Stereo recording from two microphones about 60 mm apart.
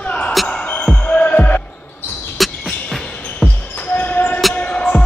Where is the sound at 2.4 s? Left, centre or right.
Centre.